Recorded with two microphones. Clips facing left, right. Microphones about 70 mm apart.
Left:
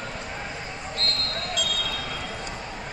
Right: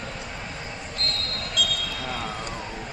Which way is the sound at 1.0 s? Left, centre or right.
Left.